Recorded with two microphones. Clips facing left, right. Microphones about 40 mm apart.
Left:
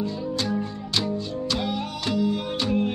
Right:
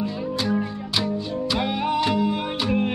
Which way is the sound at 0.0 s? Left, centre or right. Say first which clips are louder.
Right 2 dB; centre.